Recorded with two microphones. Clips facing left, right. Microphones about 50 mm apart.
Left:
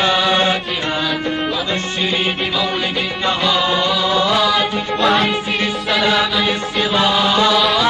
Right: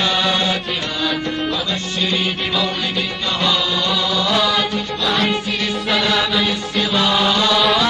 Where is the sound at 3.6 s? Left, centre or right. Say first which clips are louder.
Left 4 dB; left.